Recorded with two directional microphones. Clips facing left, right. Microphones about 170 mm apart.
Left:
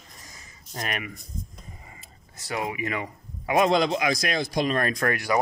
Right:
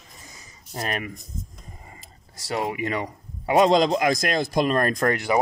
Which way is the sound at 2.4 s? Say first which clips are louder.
Right 3 dB; 30° right (ahead or behind).